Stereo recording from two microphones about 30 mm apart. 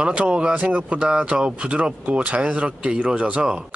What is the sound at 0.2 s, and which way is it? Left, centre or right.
Speech, right.